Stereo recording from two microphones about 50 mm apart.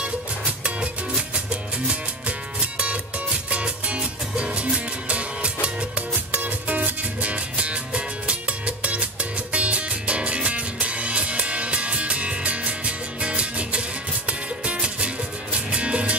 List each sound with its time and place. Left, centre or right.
0.0 s music: right
3.4 s music: right